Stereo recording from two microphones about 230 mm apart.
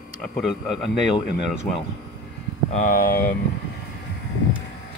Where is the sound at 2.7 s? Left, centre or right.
Left.